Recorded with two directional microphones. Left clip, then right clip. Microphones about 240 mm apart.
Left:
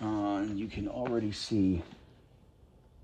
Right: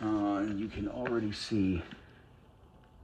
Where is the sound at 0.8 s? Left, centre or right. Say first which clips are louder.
Left 1 dB; centre.